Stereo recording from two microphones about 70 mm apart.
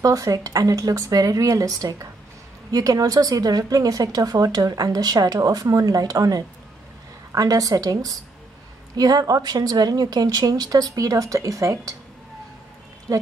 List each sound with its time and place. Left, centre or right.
0.0 s speech: right
13.1 s speech: right